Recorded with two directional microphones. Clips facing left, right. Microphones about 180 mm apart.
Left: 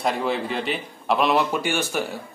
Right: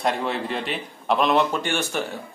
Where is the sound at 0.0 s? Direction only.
Centre (ahead or behind).